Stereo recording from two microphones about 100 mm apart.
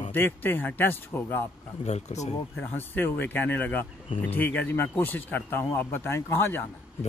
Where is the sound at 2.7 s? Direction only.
20° left (ahead or behind).